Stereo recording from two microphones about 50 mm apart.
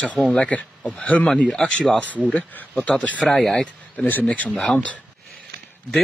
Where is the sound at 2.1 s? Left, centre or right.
Left.